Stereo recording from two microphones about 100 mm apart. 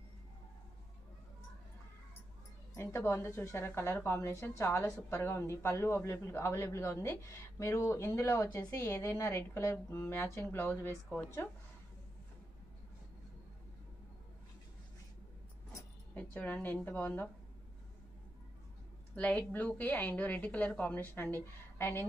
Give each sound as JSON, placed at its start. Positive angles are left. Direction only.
{"t": 2.7, "sound": "a woman's voice", "side_deg": 30}
{"t": 16.2, "sound": "a woman's voice", "side_deg": 20}
{"t": 19.1, "sound": "a woman's voice", "side_deg": 15}